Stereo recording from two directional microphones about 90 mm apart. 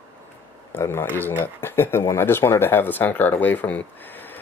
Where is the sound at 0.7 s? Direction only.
25° left (ahead or behind).